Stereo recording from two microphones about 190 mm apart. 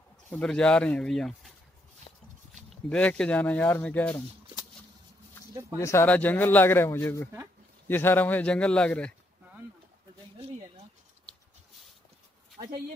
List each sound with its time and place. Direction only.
0.3 s speech: 5° left (ahead or behind)
2.7 s speech: 5° left (ahead or behind)
5.5 s a sound: 15° right (ahead or behind)
5.8 s speech: 15° left (ahead or behind)
12.6 s speech: 30° right (ahead or behind)